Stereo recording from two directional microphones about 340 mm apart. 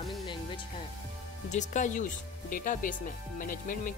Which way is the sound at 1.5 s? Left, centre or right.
Left.